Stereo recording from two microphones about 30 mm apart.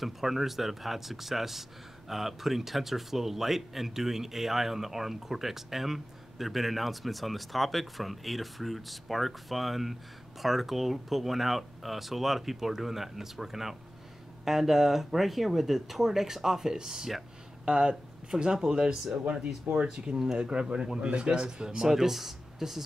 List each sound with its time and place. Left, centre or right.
0.0 s speech: centre; by 21.8 s right
21.8 s speech: centre